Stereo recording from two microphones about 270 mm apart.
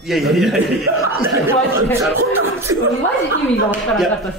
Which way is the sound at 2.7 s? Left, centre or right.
Right.